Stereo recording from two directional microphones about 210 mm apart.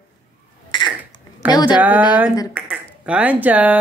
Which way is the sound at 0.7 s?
20° left (ahead or behind).